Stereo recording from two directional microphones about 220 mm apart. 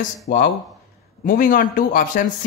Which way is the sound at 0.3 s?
45° left (ahead or behind).